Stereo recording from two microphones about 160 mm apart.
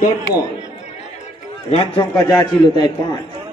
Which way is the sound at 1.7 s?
35° left (ahead or behind).